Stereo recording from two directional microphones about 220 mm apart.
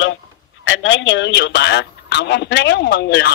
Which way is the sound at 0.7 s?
55° left (ahead or behind).